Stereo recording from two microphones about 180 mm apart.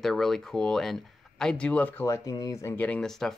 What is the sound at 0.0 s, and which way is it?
Speech, centre (ahead or behind).